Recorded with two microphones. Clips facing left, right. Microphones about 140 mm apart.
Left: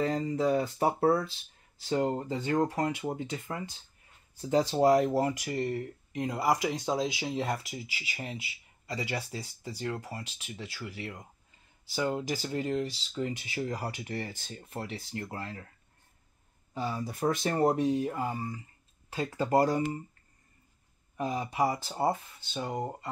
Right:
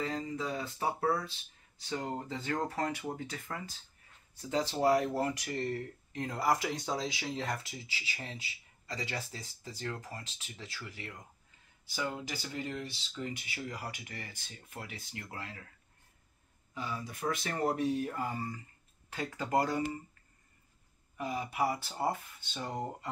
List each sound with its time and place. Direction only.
0.0 s speech: 35° left (ahead or behind)
2.1 s speech: 20° left (ahead or behind)
4.4 s speech: 35° left (ahead or behind)
7.8 s speech: 30° right (ahead or behind)
8.1 s speech: 15° left (ahead or behind)
12.0 s speech: 35° left (ahead or behind)
13.6 s speech: 40° left (ahead or behind)
16.7 s speech: 35° left (ahead or behind)
18.1 s speech: 20° left (ahead or behind)
21.2 s speech: 35° left (ahead or behind)
21.6 s speech: 15° left (ahead or behind)